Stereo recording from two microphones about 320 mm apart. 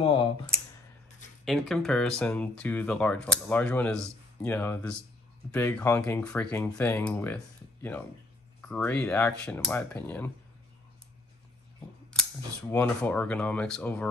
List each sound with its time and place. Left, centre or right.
0.0 s a sound: centre
1.4 s speech: centre
12.1 s speech: centre